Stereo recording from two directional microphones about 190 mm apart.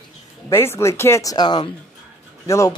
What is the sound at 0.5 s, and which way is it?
Speech, 10° left (ahead or behind).